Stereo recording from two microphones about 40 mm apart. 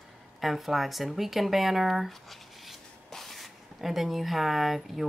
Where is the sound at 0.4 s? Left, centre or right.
Centre.